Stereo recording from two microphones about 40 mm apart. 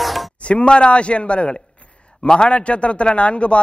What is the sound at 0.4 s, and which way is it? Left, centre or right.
A man's voice, left.